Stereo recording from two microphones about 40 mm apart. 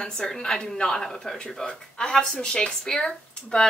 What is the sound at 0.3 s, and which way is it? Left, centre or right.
A woman's voice, centre.